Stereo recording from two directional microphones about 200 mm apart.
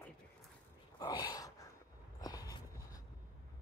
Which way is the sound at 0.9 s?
20° left (ahead or behind).